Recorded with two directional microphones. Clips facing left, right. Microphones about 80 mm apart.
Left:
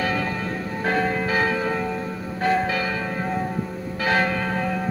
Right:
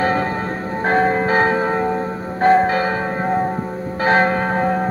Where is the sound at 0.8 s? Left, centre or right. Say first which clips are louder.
Right 7 dB; right.